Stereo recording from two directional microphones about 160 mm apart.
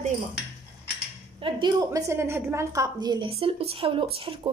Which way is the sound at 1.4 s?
30° right (ahead or behind).